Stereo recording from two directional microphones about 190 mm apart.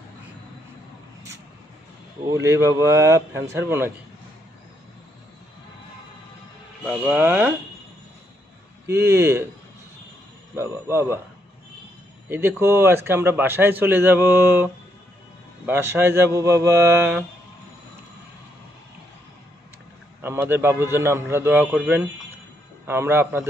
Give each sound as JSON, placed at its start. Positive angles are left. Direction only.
{"t": 2.4, "sound": "a man's voice", "side_deg": -15}
{"t": 6.8, "sound": "a man's voice", "side_deg": -10}
{"t": 8.8, "sound": "a man's voice", "side_deg": -15}
{"t": 10.5, "sound": "a man's voice", "side_deg": -15}
{"t": 12.3, "sound": "a man's voice", "side_deg": -10}
{"t": 20.2, "sound": "a man's voice", "side_deg": -10}